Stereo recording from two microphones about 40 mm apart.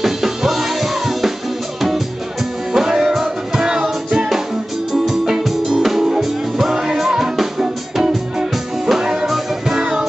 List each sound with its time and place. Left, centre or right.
0.0 s music: centre
2.7 s music: centre
5.4 s music: centre